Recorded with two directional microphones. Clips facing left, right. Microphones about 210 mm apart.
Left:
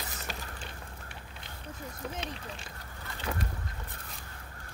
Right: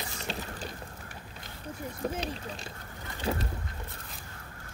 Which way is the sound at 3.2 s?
25° right (ahead or behind).